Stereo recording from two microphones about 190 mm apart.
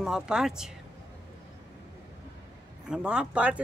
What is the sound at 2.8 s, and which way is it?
Speech, 5° right (ahead or behind).